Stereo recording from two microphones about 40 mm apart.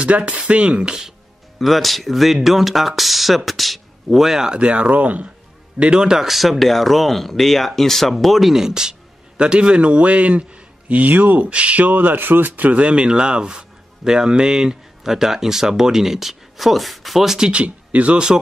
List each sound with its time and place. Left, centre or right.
0.0 s a man's voice: right
1.6 s speech: centre
4.4 s a man's voice: right
5.8 s speech: right
6.1 s speech: centre
9.4 s a man's voice: right
11.9 s speech: right
12.7 s speech: right; by 17.5 s centre
17.5 s speech: right